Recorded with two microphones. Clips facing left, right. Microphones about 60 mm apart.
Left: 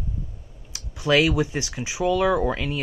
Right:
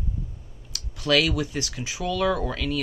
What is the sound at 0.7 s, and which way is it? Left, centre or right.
Speech, left.